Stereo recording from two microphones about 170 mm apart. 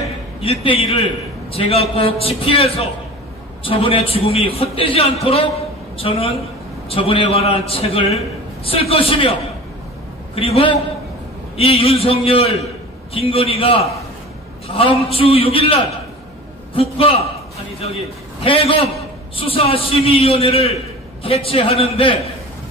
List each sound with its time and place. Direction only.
0.4 s a man's voice: 35° left (ahead or behind)
10.3 s a man's voice: 35° left (ahead or behind)